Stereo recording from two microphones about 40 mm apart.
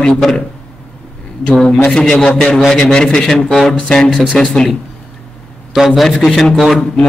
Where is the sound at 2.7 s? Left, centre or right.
Centre.